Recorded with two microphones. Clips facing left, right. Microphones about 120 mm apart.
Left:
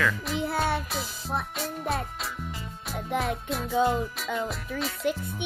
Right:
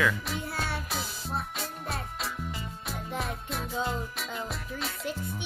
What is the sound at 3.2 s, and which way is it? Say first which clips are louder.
Music: left 5 dB; centre (ahead or behind).